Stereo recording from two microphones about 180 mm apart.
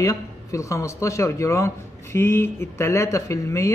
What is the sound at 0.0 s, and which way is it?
A man's voice, 20° left (ahead or behind).